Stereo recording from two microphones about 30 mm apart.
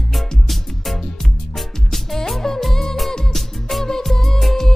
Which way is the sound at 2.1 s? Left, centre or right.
Centre.